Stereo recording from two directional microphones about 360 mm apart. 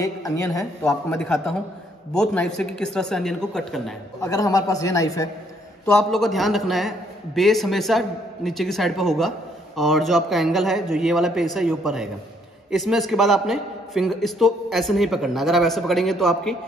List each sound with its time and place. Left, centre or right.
0.0 s a man's voice: centre